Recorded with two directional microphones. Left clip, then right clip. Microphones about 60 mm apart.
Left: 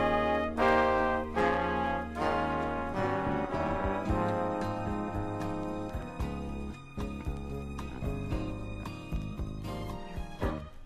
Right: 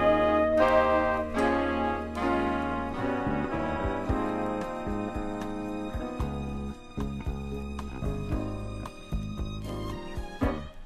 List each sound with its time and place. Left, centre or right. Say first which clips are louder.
0.0 s music: right 5 dB; centre